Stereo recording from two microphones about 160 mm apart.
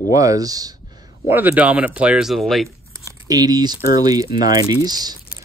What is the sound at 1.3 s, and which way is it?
Speech, 10° right (ahead or behind).